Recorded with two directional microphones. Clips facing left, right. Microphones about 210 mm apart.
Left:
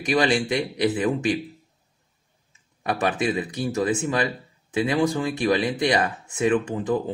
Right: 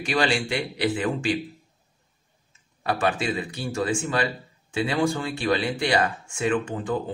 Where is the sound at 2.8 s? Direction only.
20° left (ahead or behind).